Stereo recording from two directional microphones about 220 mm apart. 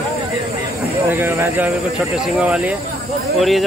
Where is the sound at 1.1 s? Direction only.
10° right (ahead or behind).